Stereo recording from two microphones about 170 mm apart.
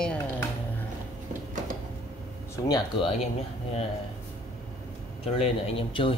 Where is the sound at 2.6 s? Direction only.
25° left (ahead or behind).